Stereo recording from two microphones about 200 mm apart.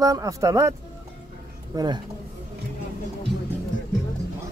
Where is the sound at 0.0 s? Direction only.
15° right (ahead or behind).